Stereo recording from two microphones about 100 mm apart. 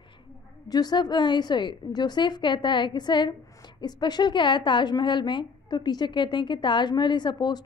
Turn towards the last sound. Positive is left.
turn(degrees=45)  # may be behind; listen again after turning